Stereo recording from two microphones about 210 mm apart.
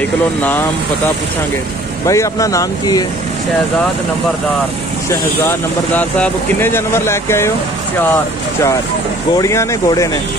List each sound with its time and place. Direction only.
2.0 s speech: 15° left (ahead or behind)
5.9 s speech: 5° left (ahead or behind)
9.4 s speech: 15° left (ahead or behind)